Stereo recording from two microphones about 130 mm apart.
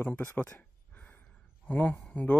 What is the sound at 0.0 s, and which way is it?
Speech, 15° left (ahead or behind).